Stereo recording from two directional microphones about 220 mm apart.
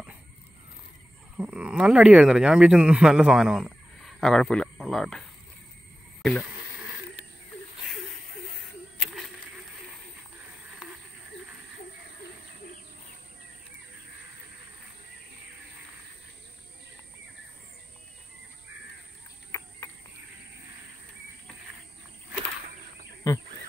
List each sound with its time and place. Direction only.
1.3 s speech: 5° right (ahead or behind)
19.5 s a sound: 10° left (ahead or behind)
23.3 s bird: 15° left (ahead or behind)